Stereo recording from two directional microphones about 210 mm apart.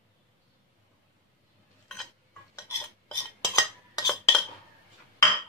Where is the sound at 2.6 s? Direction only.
15° left (ahead or behind).